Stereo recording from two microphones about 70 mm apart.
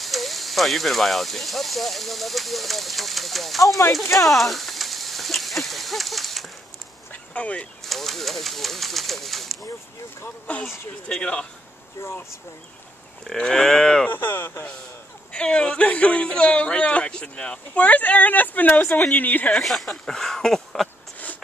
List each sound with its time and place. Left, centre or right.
0.0 s speech: centre
7.1 s a sound: centre
7.8 s speech: centre
10.4 s speech: centre
12.0 s speech: left
13.3 s speech: centre
14.0 s speech: left
15.3 s speech: centre
19.5 s speech: centre